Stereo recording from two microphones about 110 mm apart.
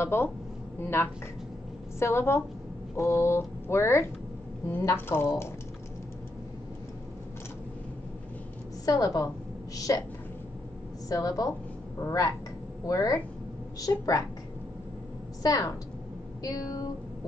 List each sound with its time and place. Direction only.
0.0 s a woman's voice: 20° left (ahead or behind)
8.8 s speech: 30° left (ahead or behind)
11.1 s speech: 35° left (ahead or behind)
15.4 s speech: 35° left (ahead or behind)